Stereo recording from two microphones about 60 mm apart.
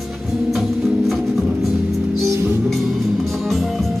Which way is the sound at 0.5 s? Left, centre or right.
Centre.